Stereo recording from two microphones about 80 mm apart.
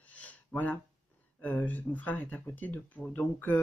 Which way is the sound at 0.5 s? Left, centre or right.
Centre.